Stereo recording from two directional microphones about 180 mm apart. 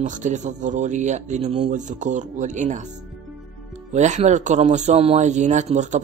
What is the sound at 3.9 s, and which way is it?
A man's voice, 40° right (ahead or behind).